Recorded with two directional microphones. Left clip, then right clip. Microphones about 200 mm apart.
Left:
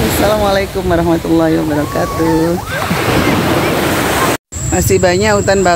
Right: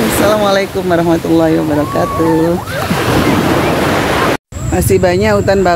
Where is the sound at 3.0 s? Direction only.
35° left (ahead or behind).